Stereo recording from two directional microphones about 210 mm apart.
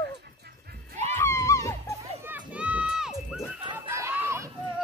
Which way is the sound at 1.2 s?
15° left (ahead or behind).